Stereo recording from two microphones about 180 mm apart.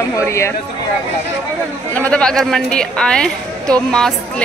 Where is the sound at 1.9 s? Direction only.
5° left (ahead or behind).